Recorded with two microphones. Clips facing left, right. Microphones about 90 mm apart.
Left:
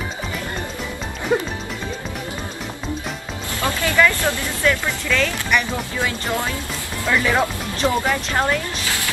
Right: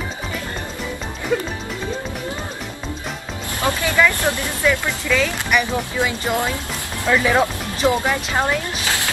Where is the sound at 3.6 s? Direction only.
20° right (ahead or behind).